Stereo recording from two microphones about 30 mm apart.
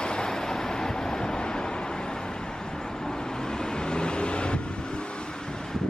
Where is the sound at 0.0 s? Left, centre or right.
Left.